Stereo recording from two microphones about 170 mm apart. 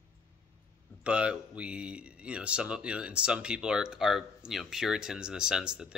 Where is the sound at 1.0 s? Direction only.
5° right (ahead or behind).